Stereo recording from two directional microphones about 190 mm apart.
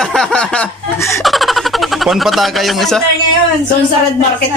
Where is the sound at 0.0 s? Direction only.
5° left (ahead or behind).